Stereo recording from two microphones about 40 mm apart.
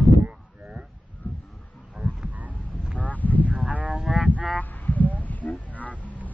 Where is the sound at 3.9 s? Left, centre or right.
Centre.